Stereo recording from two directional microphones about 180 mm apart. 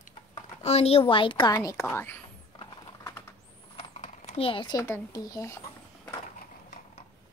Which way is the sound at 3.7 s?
35° left (ahead or behind).